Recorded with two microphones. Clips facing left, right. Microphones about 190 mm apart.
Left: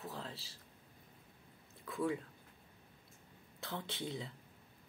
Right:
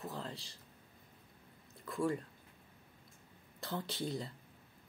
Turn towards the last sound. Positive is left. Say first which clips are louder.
# right 3 dB
turn(degrees=0)  # may be behind; listen again after turning